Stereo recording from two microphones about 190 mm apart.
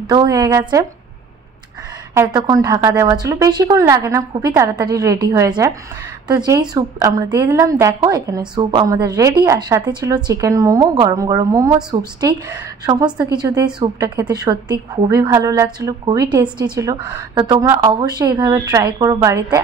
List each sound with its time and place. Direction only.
0.0 s a woman's voice: 20° right (ahead or behind)
2.3 s a woman's voice: 20° right (ahead or behind)